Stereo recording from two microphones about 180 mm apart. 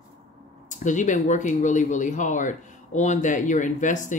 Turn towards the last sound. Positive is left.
turn(degrees=45)  # may be behind; listen again after turning